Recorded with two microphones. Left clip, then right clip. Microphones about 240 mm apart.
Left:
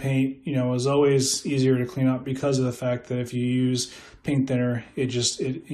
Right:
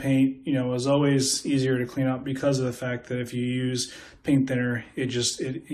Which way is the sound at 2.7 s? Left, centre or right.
Centre.